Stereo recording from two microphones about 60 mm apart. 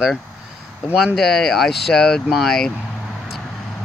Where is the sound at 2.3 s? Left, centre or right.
Centre.